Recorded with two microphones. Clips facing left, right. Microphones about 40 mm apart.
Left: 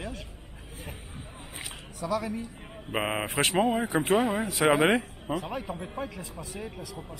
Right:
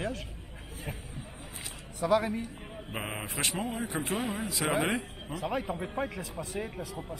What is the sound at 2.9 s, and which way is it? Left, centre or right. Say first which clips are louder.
A man's voice: left 8 dB; left.